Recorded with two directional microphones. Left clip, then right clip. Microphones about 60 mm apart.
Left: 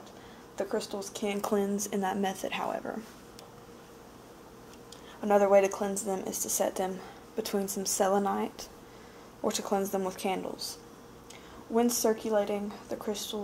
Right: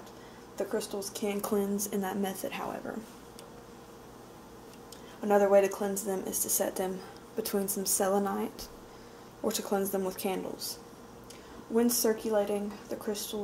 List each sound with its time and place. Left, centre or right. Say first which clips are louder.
0.6 s speech: left 1 dB; centre
5.2 s a woman's voice: left 1 dB; left
11.7 s a woman's voice: left 1 dB; centre